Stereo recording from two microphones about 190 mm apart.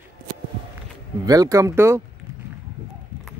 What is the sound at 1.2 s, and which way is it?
Speech, 20° right (ahead or behind).